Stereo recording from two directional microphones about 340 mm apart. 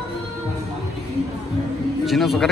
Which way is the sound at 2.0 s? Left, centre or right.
Centre.